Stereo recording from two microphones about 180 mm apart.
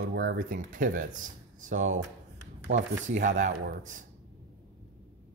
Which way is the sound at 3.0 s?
45° right (ahead or behind).